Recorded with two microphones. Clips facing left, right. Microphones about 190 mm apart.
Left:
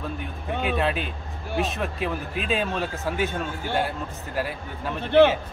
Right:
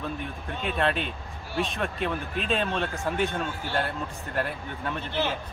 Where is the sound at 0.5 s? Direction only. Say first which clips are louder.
Left 7 dB; 65° left (ahead or behind).